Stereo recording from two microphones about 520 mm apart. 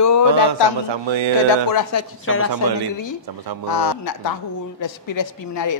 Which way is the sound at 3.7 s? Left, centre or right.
Left.